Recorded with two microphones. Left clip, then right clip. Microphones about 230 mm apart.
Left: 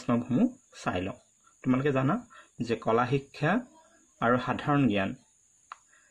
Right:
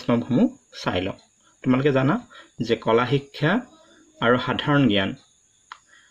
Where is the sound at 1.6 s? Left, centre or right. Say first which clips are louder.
Right 7 dB; centre.